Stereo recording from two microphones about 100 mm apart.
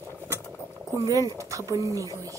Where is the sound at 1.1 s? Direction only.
35° right (ahead or behind).